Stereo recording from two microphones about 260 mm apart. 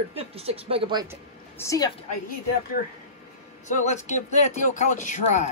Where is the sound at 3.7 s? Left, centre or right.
Left.